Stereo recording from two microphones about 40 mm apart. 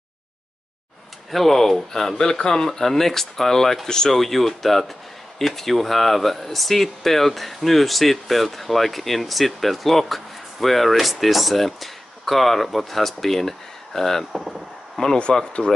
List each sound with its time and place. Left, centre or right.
1.3 s speech: centre
14.3 s speech: centre
15.3 s speech: left